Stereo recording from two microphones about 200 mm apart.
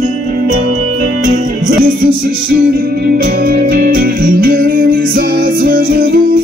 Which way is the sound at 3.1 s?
45° right (ahead or behind).